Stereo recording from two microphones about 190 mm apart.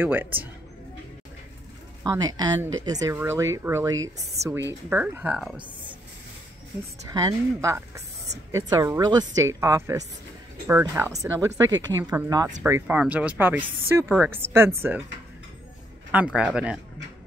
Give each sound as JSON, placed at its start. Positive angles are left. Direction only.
{"t": 0.0, "sound": "speech", "side_deg": -10}
{"t": 2.0, "sound": "a woman's voice", "side_deg": -20}
{"t": 4.4, "sound": "a woman's voice", "side_deg": -35}
{"t": 4.8, "sound": "speech", "side_deg": -10}
{"t": 7.1, "sound": "a woman's voice", "side_deg": -20}
{"t": 16.3, "sound": "speech", "side_deg": -5}